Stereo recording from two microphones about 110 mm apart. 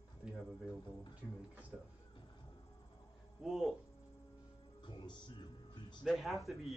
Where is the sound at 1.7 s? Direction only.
5° right (ahead or behind).